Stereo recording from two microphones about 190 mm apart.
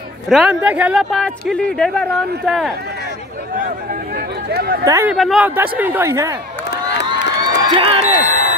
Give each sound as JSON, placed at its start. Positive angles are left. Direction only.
{"t": 0.3, "sound": "speech", "side_deg": -5}
{"t": 1.5, "sound": "speech", "side_deg": 5}
{"t": 4.5, "sound": "speech", "side_deg": -55}
{"t": 4.8, "sound": "speech", "side_deg": -15}
{"t": 5.1, "sound": "speech", "side_deg": 0}
{"t": 7.1, "sound": "a sound", "side_deg": -25}